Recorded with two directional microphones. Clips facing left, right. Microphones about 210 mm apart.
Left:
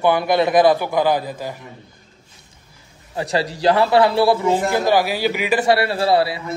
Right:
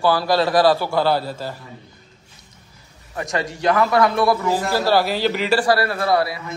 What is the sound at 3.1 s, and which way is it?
A man's voice, 35° left (ahead or behind).